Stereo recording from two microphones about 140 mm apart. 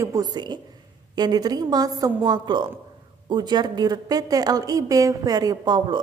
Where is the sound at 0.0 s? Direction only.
25° right (ahead or behind).